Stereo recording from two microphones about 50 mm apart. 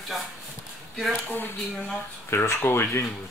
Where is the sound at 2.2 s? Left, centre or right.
Left.